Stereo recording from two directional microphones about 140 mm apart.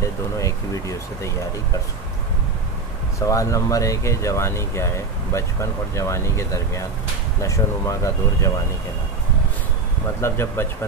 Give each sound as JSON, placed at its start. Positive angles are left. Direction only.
{"t": 0.4, "sound": "speech", "side_deg": 25}
{"t": 3.2, "sound": "speech", "side_deg": 25}
{"t": 10.2, "sound": "speech", "side_deg": 15}